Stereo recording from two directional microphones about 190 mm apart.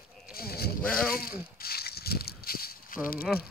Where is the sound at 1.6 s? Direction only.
55° left (ahead or behind).